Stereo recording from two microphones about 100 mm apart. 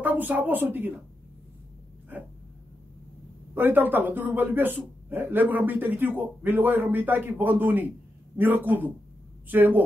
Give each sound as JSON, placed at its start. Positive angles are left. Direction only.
{"t": 0.0, "sound": "a woman's voice", "side_deg": -15}
{"t": 3.5, "sound": "a man's voice", "side_deg": -20}